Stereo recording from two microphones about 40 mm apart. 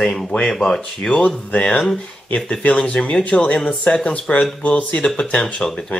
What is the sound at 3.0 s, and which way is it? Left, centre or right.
Speech, left.